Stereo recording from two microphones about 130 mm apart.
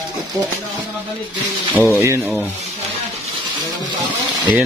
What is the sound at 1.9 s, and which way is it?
Speech, 20° right (ahead or behind).